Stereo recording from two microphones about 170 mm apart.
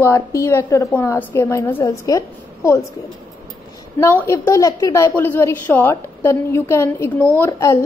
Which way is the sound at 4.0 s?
15° left (ahead or behind).